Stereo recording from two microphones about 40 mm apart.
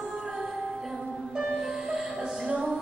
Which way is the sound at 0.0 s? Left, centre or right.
Centre.